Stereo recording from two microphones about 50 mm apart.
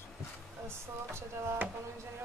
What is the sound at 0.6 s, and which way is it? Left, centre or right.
Speech, right.